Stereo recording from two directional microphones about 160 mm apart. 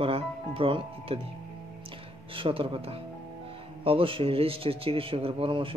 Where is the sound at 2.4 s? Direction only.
35° right (ahead or behind).